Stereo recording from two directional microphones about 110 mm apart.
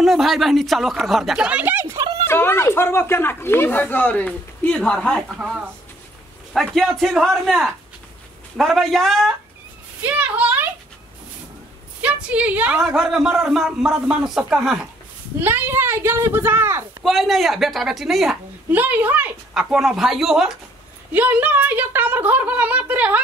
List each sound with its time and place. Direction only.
0.0 s a man's voice: 5° right (ahead or behind); by 2.0 s 20° right (ahead or behind)
2.2 s speech: 20° left (ahead or behind)
5.4 s a woman's voice: 10° right (ahead or behind)
6.5 s a man's voice: 5° left (ahead or behind)
10.0 s speech: 15° right (ahead or behind)
12.0 s a woman's voice: 10° right (ahead or behind)
12.8 s a man's voice: 5° right (ahead or behind)
15.4 s speech: 20° right (ahead or behind)
17.0 s a man's voice: centre (ahead or behind)
18.7 s a woman's voice: 15° right (ahead or behind)
19.7 s a man's voice: 5° right (ahead or behind)
21.1 s a woman's voice: 15° right (ahead or behind)